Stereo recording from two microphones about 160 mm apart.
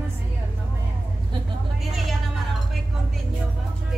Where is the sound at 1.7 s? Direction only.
Centre (ahead or behind).